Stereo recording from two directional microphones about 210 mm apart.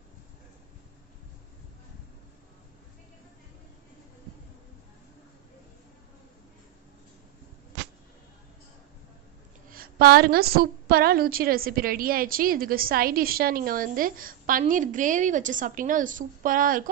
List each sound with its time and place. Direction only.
9.7 s a woman's voice: 45° right (ahead or behind)